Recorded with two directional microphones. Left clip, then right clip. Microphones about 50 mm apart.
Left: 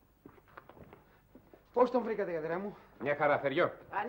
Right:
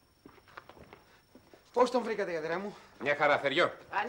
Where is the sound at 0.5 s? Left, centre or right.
Right.